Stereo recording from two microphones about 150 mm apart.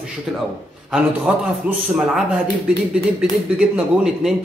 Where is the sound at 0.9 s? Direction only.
10° right (ahead or behind).